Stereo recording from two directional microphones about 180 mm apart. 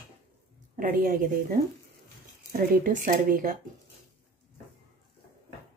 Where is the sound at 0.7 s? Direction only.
50° right (ahead or behind).